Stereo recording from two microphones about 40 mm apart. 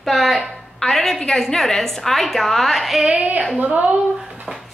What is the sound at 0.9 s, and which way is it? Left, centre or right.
Speech, centre.